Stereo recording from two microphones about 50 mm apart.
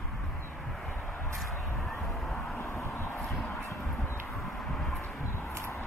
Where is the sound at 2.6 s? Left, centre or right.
Left.